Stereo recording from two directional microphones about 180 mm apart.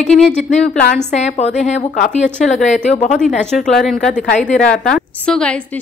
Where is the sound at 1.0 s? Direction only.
40° left (ahead or behind).